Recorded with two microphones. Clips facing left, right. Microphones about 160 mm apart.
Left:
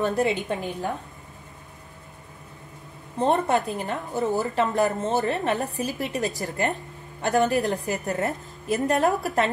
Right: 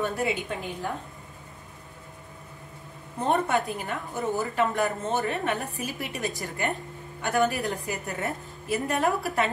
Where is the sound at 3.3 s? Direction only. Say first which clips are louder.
Left 2 dB; 40° left (ahead or behind).